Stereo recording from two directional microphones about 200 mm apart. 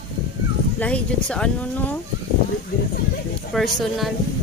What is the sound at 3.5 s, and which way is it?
Speech, centre (ahead or behind).